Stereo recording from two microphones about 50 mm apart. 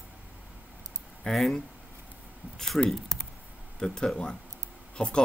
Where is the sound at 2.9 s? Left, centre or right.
Centre.